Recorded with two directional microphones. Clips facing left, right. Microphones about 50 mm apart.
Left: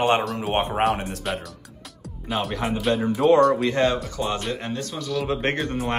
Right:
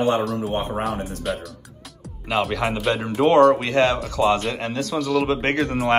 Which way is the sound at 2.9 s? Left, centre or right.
Right.